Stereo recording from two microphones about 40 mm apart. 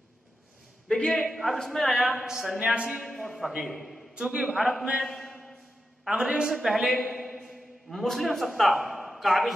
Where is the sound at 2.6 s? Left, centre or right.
Right.